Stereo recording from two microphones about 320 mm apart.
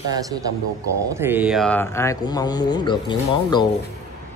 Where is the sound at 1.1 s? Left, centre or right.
Centre.